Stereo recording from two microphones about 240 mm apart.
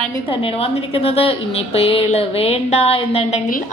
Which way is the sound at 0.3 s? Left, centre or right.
Left.